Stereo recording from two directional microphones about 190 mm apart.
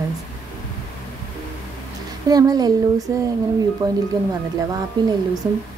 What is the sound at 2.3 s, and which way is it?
A woman's voice, 20° right (ahead or behind).